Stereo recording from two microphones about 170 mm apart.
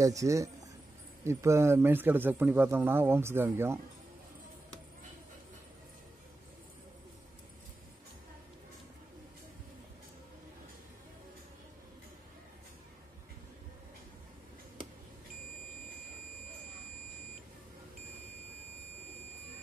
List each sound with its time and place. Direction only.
0.0 s speech: 20° right (ahead or behind)